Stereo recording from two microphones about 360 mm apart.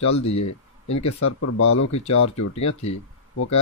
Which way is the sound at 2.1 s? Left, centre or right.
Left.